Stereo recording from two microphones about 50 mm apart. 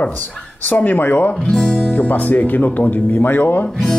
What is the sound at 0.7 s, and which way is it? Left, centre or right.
Speech, left.